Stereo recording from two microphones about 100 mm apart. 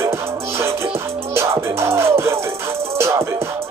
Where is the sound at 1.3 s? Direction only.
25° right (ahead or behind).